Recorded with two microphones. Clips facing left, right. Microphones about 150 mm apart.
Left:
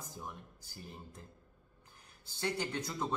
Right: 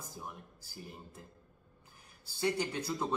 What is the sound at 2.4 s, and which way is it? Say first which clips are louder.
Speech: right 3 dB; 10° right (ahead or behind).